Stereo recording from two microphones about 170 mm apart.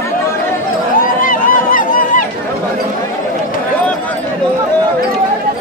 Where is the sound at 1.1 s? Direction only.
55° left (ahead or behind).